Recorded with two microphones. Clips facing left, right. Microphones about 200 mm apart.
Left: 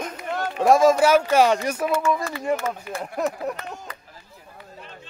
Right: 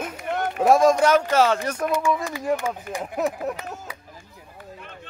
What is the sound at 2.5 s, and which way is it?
Speech, 10° right (ahead or behind).